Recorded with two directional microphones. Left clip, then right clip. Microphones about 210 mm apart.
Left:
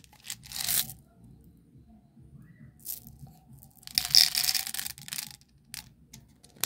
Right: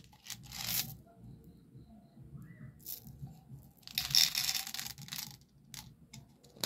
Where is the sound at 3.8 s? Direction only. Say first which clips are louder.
Left 7 dB; 15° left (ahead or behind).